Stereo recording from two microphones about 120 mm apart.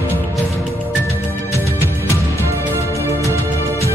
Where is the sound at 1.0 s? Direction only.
25° left (ahead or behind).